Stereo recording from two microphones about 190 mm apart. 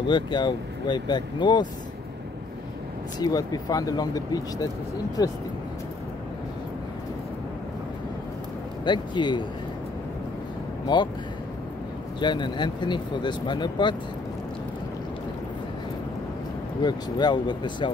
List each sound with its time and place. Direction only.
0.0 s speech: 25° left (ahead or behind)
3.2 s speech: 20° left (ahead or behind)
8.8 s speech: 25° left (ahead or behind)
10.9 s speech: 20° left (ahead or behind)
12.2 s speech: 25° left (ahead or behind)
16.8 s speech: 25° left (ahead or behind)